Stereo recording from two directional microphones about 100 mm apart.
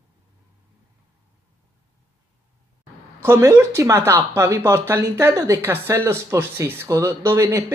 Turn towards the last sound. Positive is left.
turn(degrees=-30)  # may be behind; listen again after turning